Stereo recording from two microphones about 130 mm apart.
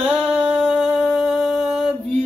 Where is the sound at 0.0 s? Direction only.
5° right (ahead or behind).